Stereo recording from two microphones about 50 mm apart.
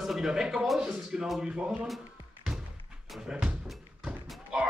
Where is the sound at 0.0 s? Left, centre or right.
Centre.